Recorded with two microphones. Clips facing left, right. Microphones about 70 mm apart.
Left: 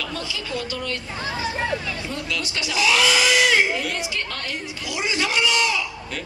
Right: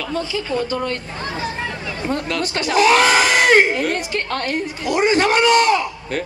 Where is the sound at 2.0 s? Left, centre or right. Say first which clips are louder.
Right 7 dB; right.